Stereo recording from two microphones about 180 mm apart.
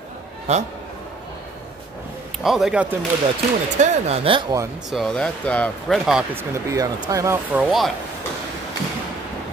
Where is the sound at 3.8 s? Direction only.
40° right (ahead or behind).